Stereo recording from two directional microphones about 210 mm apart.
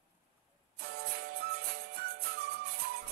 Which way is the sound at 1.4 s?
45° right (ahead or behind).